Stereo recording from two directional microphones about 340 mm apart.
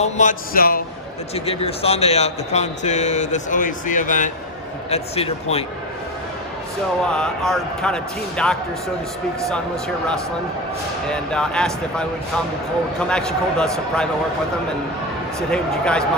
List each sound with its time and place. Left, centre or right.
0.0 s a man's voice: left
7.1 s speech: centre
11.1 s speech: centre
15.5 s speech: centre